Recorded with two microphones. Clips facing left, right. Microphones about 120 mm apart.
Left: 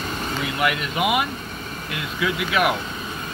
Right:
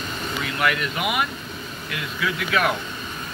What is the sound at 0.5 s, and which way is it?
Speech, 20° left (ahead or behind).